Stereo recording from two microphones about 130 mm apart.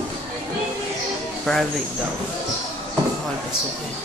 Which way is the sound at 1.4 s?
Centre (ahead or behind).